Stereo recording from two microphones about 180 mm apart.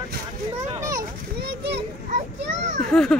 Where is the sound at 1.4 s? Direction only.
60° right (ahead or behind).